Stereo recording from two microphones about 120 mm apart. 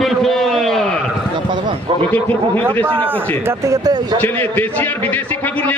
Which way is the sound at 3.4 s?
30° right (ahead or behind).